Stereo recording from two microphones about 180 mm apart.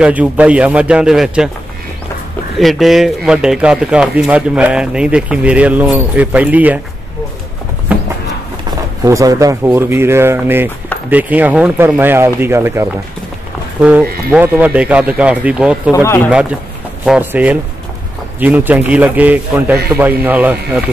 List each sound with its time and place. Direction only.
0.0 s speech: 5° right (ahead or behind)
2.6 s speech: centre (ahead or behind)
8.6 s a man's voice: 20° right (ahead or behind)
15.9 s speech: 15° left (ahead or behind)
16.3 s a man's voice: 5° right (ahead or behind)